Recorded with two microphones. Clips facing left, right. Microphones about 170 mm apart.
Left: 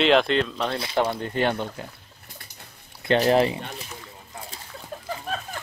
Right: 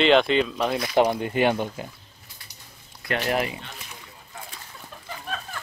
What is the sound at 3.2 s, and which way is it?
Speech, 30° left (ahead or behind).